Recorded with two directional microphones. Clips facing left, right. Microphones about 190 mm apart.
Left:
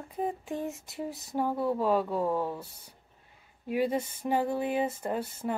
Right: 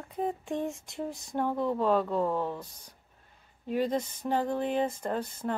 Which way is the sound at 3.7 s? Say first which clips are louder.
Even; 10° left (ahead or behind).